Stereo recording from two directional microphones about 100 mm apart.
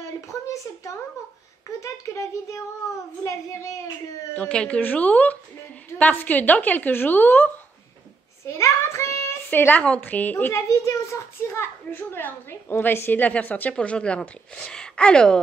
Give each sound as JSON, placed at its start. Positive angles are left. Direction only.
{"t": 0.3, "sound": "speech", "side_deg": 30}
{"t": 4.4, "sound": "a child's voice", "side_deg": 10}
{"t": 10.7, "sound": "a child's voice", "side_deg": 30}